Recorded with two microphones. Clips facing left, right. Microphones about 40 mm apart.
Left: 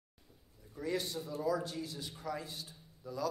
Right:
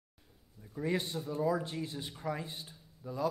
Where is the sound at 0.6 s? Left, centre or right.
Right.